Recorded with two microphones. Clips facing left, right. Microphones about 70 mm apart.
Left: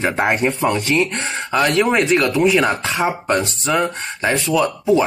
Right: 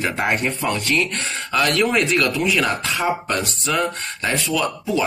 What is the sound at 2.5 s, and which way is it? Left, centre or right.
Speech, left.